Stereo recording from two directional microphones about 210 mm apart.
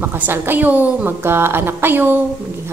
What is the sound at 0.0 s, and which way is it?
A woman's voice, 10° right (ahead or behind).